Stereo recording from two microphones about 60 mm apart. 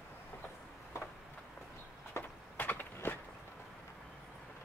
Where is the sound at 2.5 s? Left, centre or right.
Left.